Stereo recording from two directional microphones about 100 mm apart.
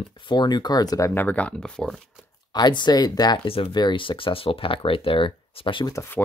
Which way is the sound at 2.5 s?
45° left (ahead or behind).